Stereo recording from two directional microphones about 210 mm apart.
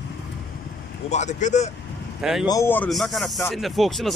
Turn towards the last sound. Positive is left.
turn(degrees=0)  # may be behind; listen again after turning